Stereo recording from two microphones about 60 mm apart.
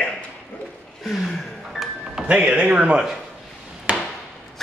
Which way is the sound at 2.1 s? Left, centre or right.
Centre.